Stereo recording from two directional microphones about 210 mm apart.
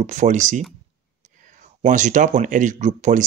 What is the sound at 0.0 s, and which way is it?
Speech, 35° right (ahead or behind).